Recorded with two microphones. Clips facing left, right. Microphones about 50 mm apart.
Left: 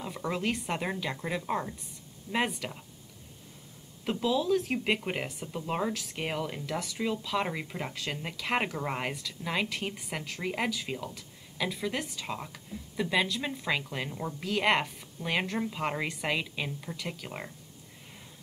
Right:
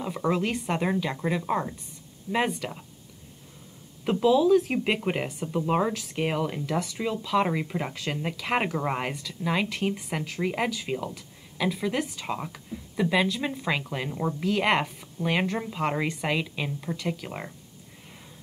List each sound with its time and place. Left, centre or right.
0.0 s speech: centre
2.3 s a woman's voice: centre
4.0 s a woman's voice: centre